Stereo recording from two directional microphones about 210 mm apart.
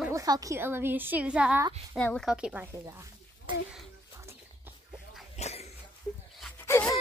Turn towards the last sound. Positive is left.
turn(degrees=10)  # may be behind; listen again after turning